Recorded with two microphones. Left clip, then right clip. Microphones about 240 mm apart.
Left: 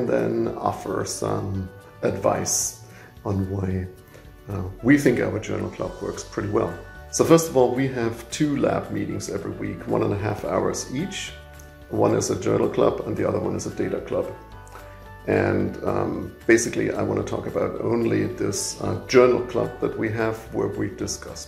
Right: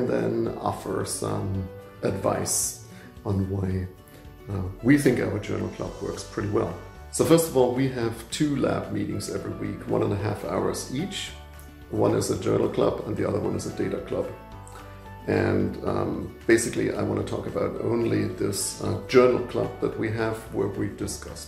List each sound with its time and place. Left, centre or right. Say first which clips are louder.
0.1 s speech: left 3 dB; centre
15.2 s speech: left 3 dB; centre